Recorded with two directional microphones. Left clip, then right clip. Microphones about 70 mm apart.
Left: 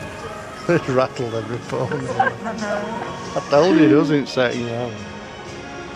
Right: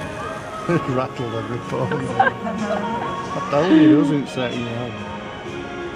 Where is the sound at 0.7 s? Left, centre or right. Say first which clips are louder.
Left 3 dB; left.